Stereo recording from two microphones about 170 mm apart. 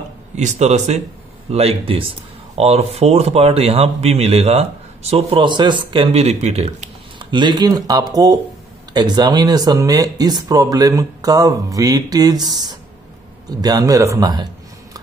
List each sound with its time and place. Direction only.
0.4 s a man's voice: 45° right (ahead or behind); by 14.5 s 25° right (ahead or behind)